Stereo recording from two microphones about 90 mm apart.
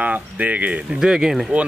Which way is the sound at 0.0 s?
15° right (ahead or behind).